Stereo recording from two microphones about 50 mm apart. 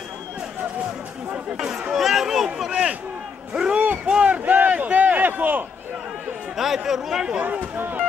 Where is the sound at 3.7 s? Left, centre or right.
Right.